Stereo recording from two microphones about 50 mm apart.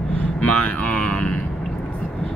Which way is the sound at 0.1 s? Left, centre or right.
Left.